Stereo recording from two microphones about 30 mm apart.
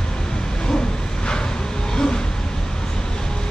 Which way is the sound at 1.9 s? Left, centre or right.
Left.